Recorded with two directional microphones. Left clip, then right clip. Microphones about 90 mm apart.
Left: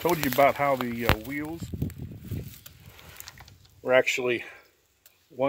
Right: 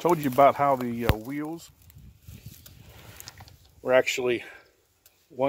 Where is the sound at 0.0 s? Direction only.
60° right (ahead or behind).